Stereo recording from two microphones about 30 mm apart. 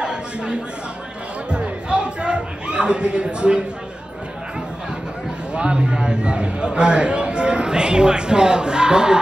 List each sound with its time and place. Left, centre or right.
0.0 s a sound: right
1.5 s music: right
5.5 s a man's voice: right